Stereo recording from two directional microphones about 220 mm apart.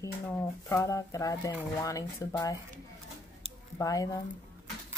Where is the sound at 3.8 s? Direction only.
15° left (ahead or behind).